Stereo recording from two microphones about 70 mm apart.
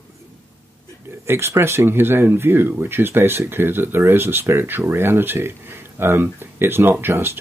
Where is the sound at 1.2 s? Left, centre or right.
Right.